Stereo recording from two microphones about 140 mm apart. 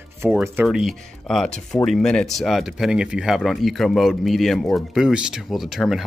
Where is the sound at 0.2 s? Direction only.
10° right (ahead or behind).